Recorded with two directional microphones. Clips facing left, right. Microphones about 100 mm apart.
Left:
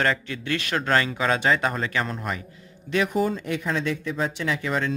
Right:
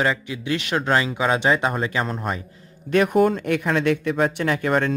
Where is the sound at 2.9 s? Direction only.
55° right (ahead or behind).